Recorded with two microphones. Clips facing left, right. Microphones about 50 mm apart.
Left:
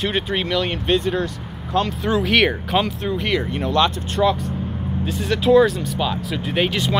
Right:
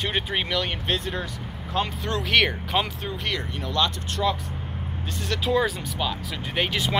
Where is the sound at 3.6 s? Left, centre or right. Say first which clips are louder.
Left 6 dB; left.